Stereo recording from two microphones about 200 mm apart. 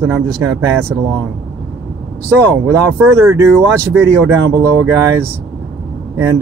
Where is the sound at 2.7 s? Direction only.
15° right (ahead or behind).